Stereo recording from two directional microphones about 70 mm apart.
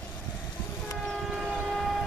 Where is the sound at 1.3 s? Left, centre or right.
Centre.